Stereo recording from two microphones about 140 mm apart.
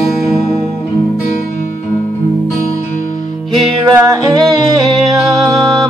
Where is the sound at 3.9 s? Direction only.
25° right (ahead or behind).